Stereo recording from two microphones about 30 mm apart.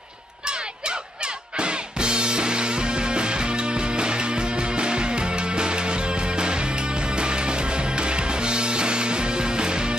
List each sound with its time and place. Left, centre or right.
0.5 s music: right